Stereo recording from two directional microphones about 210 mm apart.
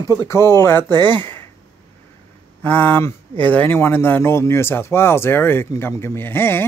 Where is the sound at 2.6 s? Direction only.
10° left (ahead or behind).